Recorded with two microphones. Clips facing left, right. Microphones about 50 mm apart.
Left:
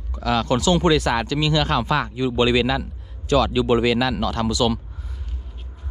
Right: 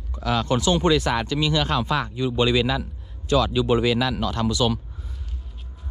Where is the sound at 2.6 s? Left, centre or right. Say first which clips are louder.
Left 2 dB; left.